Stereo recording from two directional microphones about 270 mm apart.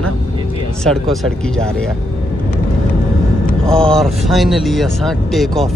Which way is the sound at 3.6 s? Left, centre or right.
Centre.